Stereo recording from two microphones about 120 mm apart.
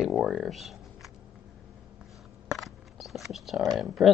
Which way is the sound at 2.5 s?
Centre (ahead or behind).